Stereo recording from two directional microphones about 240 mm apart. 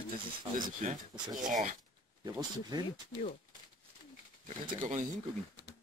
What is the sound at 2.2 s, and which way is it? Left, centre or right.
Speech, centre.